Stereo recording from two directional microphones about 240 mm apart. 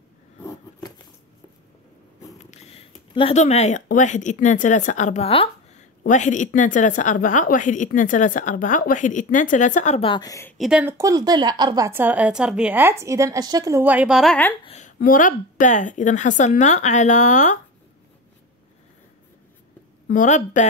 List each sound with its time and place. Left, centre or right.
0.4 s a sound: centre
2.3 s a sound: left
3.2 s speech: left
10.6 s a woman's voice: centre
14.7 s speech: left
20.1 s speech: left